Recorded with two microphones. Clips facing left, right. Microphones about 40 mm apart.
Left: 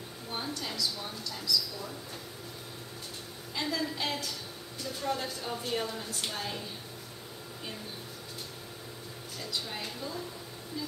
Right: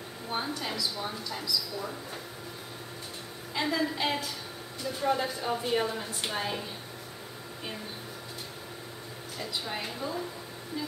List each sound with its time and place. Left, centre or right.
0.3 s a woman's voice: centre
3.5 s a woman's voice: centre
9.4 s a woman's voice: centre